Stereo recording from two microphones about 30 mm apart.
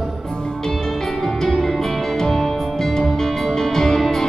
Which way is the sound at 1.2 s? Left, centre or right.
Centre.